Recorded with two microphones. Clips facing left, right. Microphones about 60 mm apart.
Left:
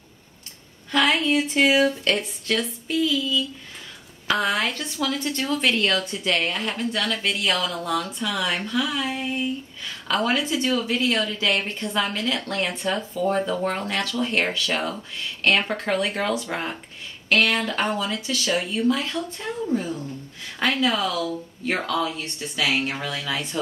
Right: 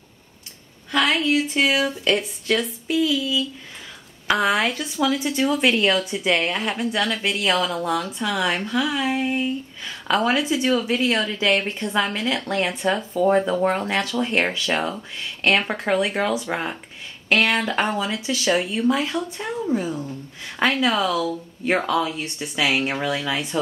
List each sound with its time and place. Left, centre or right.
0.9 s speech: centre
9.2 s speech: centre
10.0 s speech: centre
11.1 s speech: right
11.6 s speech: centre